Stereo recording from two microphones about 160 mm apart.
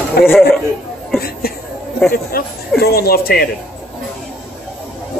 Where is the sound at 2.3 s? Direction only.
70° left (ahead or behind).